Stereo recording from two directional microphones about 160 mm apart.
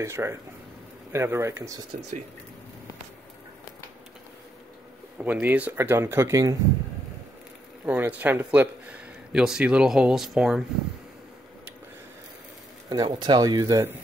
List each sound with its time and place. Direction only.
0.0 s speech: 15° right (ahead or behind)
5.2 s speech: 10° right (ahead or behind)
7.8 s speech: 10° right (ahead or behind)
12.9 s speech: 25° right (ahead or behind)